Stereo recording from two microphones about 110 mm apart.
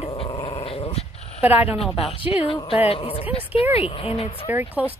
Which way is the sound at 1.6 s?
65° left (ahead or behind).